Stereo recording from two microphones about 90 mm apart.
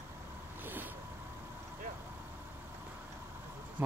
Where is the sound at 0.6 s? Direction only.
20° right (ahead or behind).